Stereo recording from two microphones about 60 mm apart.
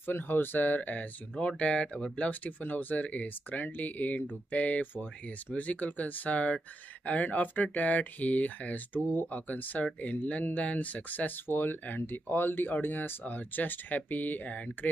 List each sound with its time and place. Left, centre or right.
0.0 s speech: left